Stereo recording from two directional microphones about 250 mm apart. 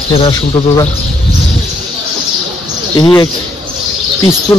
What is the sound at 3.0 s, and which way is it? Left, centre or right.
Speech, centre.